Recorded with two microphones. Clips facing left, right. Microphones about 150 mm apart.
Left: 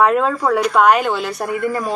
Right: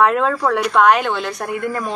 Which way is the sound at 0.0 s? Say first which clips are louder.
Left 1 dB; centre (ahead or behind).